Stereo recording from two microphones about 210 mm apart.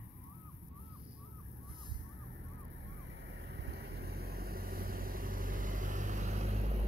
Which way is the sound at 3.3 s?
55° right (ahead or behind).